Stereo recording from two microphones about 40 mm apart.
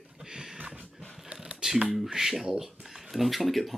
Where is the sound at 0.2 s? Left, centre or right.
Centre.